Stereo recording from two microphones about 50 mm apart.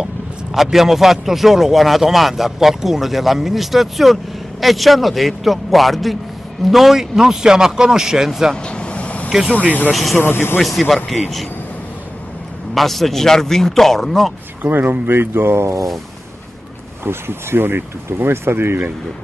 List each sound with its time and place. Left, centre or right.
0.0 s a man's voice: centre
8.6 s vehicle: centre
10.1 s speech: left
11.1 s speech: centre
12.7 s speech: centre
14.6 s speech: right
17.0 s speech: right